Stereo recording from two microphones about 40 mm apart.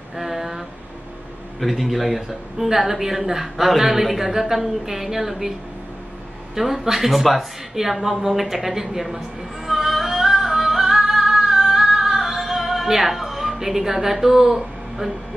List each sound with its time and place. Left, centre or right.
0.1 s a sound: centre
1.6 s a woman's voice: centre
6.5 s speech: centre
9.7 s music: centre